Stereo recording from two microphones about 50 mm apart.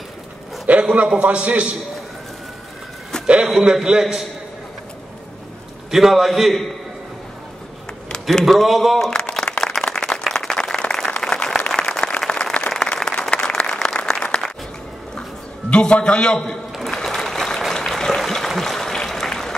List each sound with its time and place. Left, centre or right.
0.7 s a man's voice: right
3.7 s a man's voice: centre
5.9 s a man's voice: centre
8.1 s a sound: centre
8.5 s a man's voice: centre
9.3 s a sound: centre
11.7 s applause: centre
15.7 s a man's voice: centre
16.9 s applause: centre
18.6 s a sound: centre